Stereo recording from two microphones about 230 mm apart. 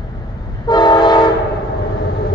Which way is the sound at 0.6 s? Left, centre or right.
Centre.